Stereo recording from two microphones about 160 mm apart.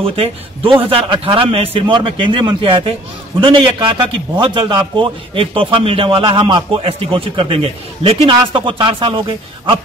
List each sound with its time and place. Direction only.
0.0 s a man's voice: 35° right (ahead or behind)